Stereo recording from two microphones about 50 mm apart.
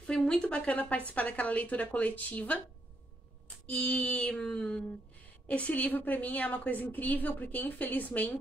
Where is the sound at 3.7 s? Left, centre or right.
Left.